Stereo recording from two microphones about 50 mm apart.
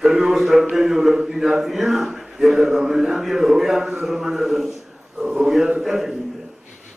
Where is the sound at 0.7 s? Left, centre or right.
Centre.